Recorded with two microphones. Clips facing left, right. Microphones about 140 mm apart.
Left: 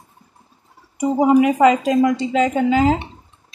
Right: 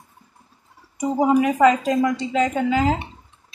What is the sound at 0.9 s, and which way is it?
A woman's voice, 15° left (ahead or behind).